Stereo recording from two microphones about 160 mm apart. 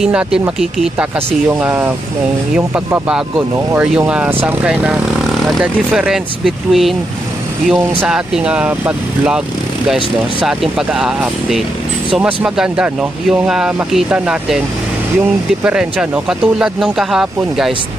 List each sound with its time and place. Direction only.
0.0 s speech: 5° right (ahead or behind)
8.0 s speech: 5° right (ahead or behind)
10.4 s speech: 5° right (ahead or behind)
15.6 s speech: 5° right (ahead or behind)